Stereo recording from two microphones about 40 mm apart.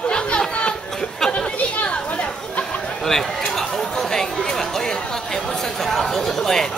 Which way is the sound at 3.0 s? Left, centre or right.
Centre.